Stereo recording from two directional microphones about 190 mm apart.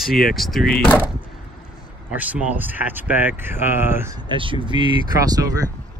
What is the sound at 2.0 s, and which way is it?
Speech, 10° right (ahead or behind).